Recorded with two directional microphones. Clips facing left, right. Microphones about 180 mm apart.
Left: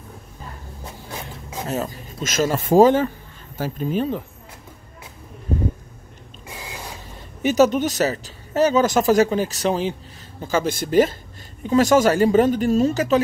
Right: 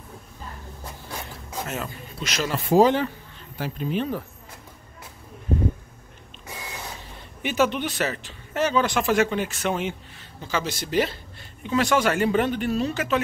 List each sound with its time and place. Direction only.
1.1 s a sound: 15° left (ahead or behind)
1.7 s speech: 40° left (ahead or behind)
7.4 s speech: 40° left (ahead or behind)
10.4 s speech: 50° left (ahead or behind)